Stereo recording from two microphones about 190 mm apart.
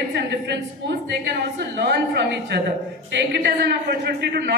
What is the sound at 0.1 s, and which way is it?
A man's voice, 65° right (ahead or behind).